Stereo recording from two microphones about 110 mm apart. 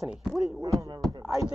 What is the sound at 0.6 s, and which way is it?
Speech, 35° right (ahead or behind).